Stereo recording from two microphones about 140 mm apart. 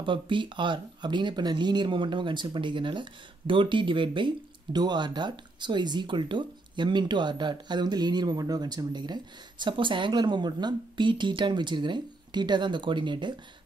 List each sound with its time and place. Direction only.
0.0 s speech: 35° right (ahead or behind)